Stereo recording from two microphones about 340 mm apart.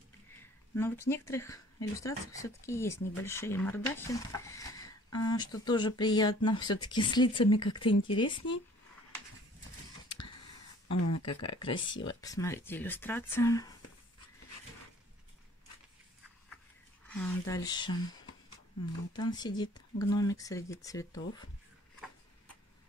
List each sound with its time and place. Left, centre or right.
0.4 s speech: centre
10.9 s speech: left
11.4 s speech: centre
17.1 s speech: centre
19.1 s speech: centre